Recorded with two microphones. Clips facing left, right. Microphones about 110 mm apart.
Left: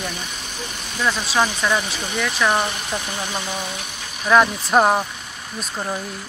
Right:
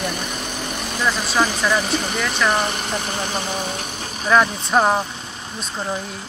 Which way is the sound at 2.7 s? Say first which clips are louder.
Right 2 dB; 35° right (ahead or behind).